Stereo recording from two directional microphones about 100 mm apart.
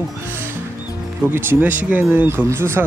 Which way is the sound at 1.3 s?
20° right (ahead or behind).